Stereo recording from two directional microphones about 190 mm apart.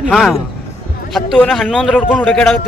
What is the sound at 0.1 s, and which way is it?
A man's voice, centre (ahead or behind).